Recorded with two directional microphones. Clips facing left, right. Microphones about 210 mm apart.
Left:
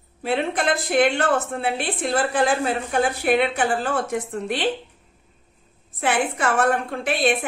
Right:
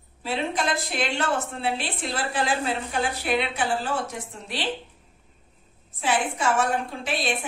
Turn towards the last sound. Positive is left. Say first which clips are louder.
# left 6 dB
turn(degrees=55)  # may be behind; listen again after turning